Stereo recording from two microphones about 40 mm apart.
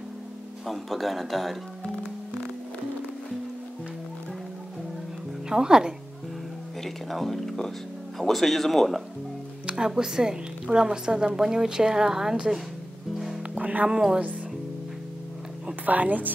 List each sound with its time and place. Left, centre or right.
0.7 s speech: centre
5.5 s a woman's voice: centre
6.8 s speech: centre
9.7 s a woman's voice: centre
13.6 s music: right
13.8 s a woman's voice: centre
15.8 s speech: right